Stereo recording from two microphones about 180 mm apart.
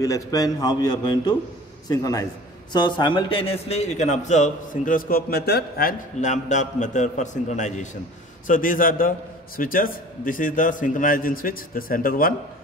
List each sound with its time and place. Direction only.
0.0 s a man's voice: 20° left (ahead or behind); by 5.9 s 60° left (ahead or behind)
6.2 s a man's voice: 40° left (ahead or behind)